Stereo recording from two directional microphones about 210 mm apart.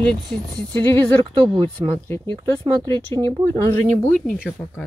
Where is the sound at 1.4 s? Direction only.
25° right (ahead or behind).